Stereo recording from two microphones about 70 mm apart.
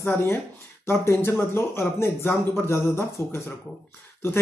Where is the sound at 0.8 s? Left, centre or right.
Left.